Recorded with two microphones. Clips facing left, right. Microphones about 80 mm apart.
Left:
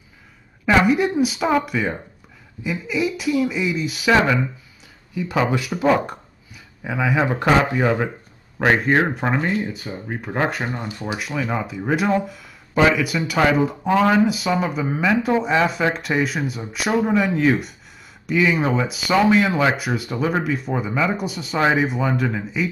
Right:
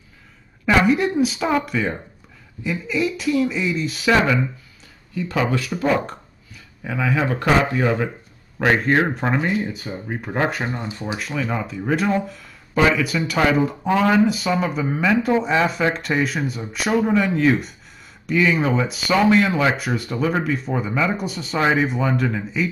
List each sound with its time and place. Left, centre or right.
0.7 s speech: centre
11.1 s speech: centre